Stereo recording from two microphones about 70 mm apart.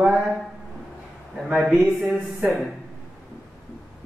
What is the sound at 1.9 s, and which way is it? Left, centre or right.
Speech, centre.